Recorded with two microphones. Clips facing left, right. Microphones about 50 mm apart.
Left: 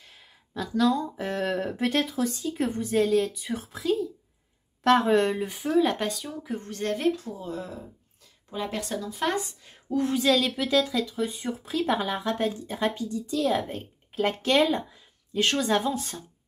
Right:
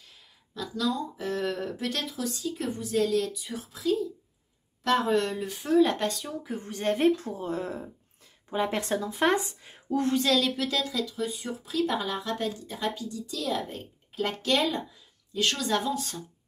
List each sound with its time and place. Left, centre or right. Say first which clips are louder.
0.2 s speech: left 3 dB; left
5.0 s speech: left 4 dB; left
5.6 s speech: right 2 dB; centre
6.7 s speech: right 4 dB; right
7.2 s speech: right 2 dB; right
9.8 s a woman's voice: left 2 dB; centre
11.1 s speech: left 3 dB; left